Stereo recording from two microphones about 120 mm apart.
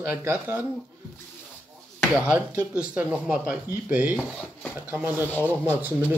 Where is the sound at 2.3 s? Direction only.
10° right (ahead or behind).